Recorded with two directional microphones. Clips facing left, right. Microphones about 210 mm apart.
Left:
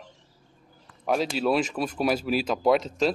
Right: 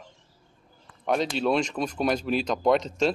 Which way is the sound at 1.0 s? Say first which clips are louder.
Even; 5° left (ahead or behind).